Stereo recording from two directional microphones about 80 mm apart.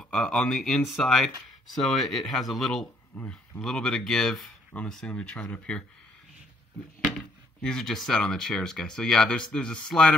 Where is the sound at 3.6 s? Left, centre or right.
Centre.